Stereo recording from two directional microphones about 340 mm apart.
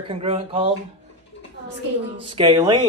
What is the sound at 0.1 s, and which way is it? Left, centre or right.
Speech, centre.